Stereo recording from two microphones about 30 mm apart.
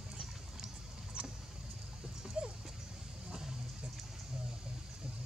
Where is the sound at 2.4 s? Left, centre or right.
Right.